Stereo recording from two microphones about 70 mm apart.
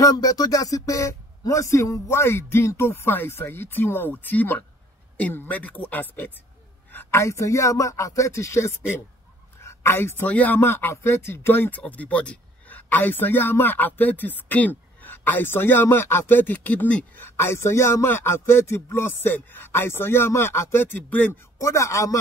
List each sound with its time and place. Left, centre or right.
0.0 s a man's voice: left
7.1 s speech: left
9.6 s a sound: left
10.2 s a man's voice: left
10.6 s speech: left
11.8 s a man's voice: left
17.2 s speech: left
21.5 s speech: left